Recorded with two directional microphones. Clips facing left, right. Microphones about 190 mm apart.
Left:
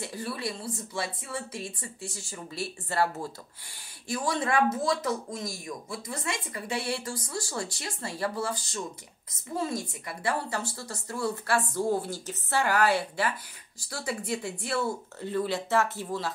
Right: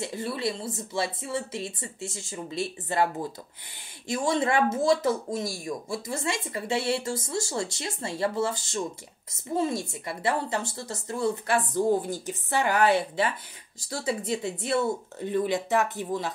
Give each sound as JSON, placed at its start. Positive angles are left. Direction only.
{"t": 0.0, "sound": "speech", "side_deg": -25}